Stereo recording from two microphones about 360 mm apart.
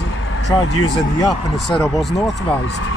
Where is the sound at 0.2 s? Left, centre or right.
Left.